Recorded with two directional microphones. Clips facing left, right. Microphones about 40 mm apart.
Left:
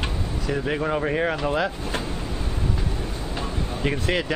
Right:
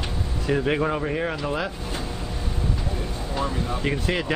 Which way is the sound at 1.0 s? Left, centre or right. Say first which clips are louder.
Left 3 dB; centre.